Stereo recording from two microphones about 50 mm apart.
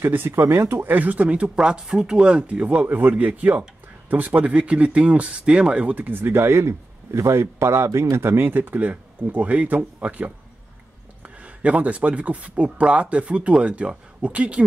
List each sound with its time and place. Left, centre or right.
0.0 s speech: right
0.4 s speech: right
6.4 s speech: right
7.2 s speech: right